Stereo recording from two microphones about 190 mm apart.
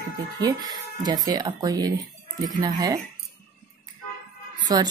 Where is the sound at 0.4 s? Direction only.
20° right (ahead or behind).